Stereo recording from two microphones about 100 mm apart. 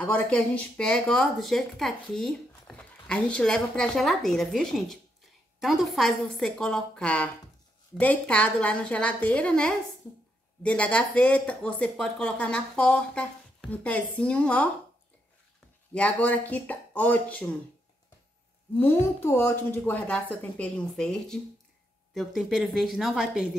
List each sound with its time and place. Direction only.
0.0 s speech: 10° left (ahead or behind)
15.9 s speech: 15° left (ahead or behind)
18.8 s a woman's voice: 25° left (ahead or behind); by 23.5 s 5° right (ahead or behind)